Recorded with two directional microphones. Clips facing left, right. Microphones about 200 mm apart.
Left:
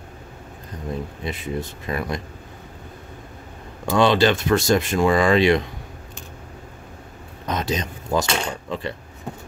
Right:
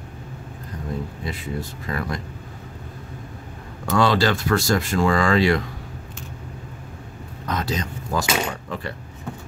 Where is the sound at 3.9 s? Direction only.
20° left (ahead or behind).